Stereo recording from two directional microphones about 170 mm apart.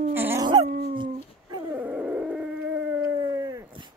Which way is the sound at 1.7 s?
10° right (ahead or behind).